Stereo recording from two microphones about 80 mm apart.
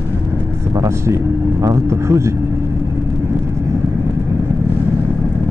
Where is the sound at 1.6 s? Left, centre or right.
Right.